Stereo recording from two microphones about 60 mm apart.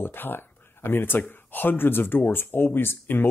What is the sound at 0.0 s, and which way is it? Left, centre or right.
Speech, left.